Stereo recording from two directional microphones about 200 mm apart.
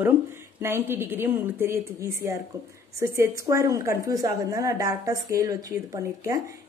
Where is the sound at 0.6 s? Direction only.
10° right (ahead or behind).